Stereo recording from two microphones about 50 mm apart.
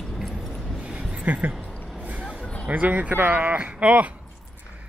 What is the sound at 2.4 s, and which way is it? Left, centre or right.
Music, left.